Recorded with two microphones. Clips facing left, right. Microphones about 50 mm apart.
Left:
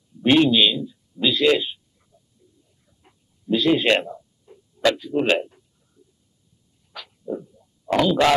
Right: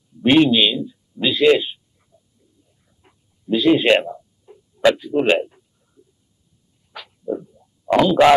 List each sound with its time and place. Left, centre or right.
0.2 s speech: centre
3.0 s a sound: centre
6.9 s dog: centre
8.1 s speech: centre